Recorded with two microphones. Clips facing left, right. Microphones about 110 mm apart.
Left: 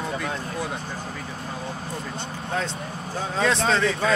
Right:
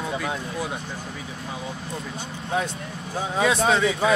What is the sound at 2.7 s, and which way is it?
Vehicle, 30° left (ahead or behind).